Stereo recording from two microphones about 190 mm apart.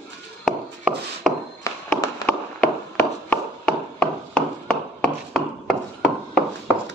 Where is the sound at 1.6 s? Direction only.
20° left (ahead or behind).